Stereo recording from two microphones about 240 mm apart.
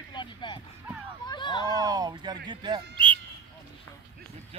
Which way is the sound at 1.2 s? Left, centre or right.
Centre.